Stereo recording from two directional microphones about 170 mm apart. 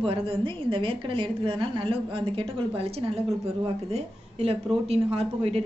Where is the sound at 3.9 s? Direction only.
40° right (ahead or behind).